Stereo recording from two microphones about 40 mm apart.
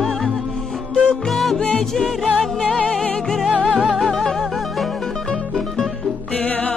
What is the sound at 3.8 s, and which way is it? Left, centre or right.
Music, centre.